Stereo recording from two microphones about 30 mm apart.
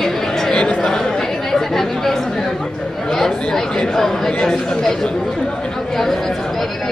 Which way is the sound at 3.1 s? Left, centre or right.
Centre.